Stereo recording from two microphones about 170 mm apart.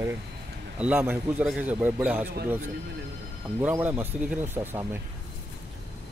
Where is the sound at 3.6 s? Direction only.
10° right (ahead or behind).